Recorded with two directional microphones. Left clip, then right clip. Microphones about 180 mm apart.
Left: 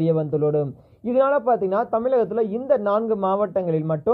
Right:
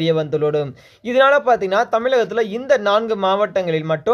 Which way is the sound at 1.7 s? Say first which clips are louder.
Right 4 dB; 25° right (ahead or behind).